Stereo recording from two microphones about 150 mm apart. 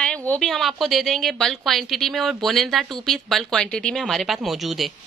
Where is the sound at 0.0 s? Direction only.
5° left (ahead or behind).